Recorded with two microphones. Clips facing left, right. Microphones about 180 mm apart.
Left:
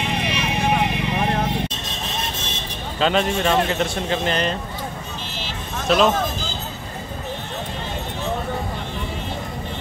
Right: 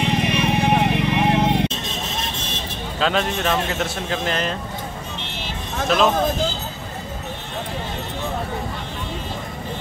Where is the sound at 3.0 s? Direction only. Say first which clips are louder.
Left 2 dB; centre (ahead or behind).